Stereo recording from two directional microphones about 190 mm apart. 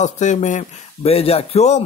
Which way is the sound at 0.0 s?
40° left (ahead or behind).